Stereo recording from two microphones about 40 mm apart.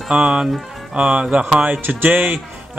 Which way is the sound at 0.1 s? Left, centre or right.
Right.